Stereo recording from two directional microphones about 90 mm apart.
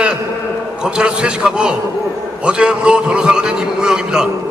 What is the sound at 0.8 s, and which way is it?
A man's voice, 10° right (ahead or behind).